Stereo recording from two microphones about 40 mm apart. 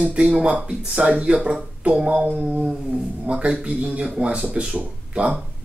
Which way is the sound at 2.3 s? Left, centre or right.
Right.